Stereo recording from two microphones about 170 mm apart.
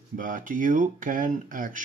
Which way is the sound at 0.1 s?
50° right (ahead or behind).